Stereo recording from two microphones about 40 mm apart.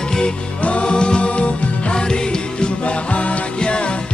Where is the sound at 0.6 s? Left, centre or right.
Left.